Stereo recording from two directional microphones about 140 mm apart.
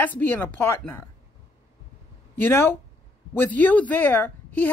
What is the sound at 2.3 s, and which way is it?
A woman's voice, 15° left (ahead or behind).